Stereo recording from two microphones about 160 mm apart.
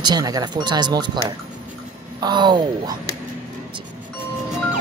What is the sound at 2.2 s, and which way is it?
Speech, 25° right (ahead or behind).